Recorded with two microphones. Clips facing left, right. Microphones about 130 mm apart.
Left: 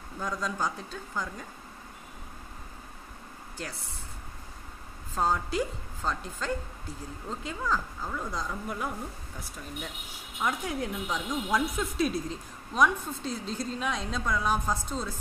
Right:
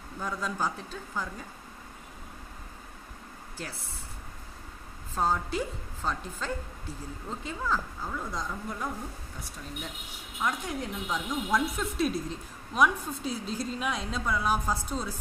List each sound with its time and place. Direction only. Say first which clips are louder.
0.2 s speech: even; 5° right (ahead or behind)
5.1 s speech: left 1 dB; centre (ahead or behind)
10.4 s speech: left 1 dB; 5° left (ahead or behind)